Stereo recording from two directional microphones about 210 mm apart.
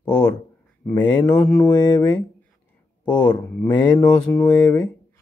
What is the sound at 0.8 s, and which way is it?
Speech, 10° left (ahead or behind).